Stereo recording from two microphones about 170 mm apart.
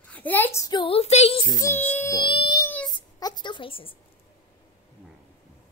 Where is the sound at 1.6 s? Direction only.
10° left (ahead or behind); by 2.6 s 30° left (ahead or behind).